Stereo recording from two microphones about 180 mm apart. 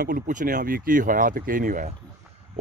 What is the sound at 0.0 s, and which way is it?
Speech, 50° right (ahead or behind).